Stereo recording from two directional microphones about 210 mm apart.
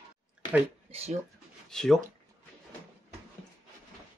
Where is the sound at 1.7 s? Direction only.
Centre (ahead or behind).